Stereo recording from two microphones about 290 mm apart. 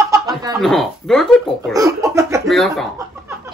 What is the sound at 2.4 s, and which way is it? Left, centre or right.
Speech, centre.